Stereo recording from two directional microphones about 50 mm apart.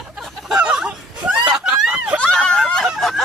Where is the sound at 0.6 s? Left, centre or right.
Centre.